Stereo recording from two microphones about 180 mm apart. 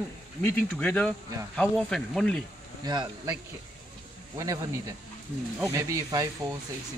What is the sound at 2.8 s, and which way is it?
Speech, 20° right (ahead or behind).